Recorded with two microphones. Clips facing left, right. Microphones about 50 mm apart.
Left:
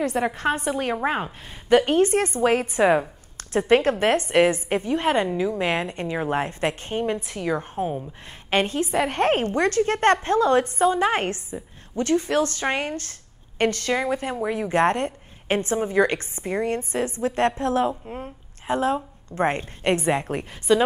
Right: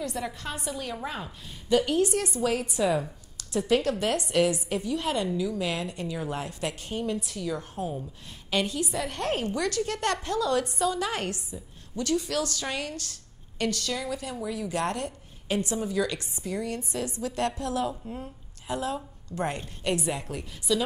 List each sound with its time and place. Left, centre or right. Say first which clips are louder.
0.0 s a woman's voice: left 10 dB; left